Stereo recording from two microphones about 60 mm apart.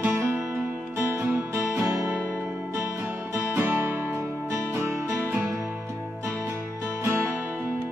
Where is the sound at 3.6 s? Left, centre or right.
Right.